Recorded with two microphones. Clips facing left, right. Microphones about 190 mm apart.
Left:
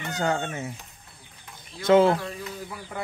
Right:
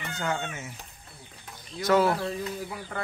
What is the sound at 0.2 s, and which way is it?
Speech, 35° left (ahead or behind).